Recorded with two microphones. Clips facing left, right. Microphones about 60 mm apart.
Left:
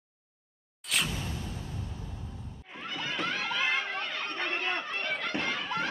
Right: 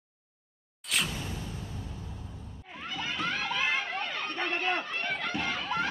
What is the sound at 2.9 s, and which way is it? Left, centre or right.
Run, centre.